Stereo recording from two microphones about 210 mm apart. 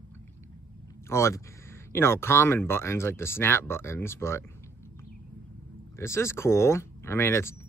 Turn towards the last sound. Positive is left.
turn(degrees=10)  # may be behind; listen again after turning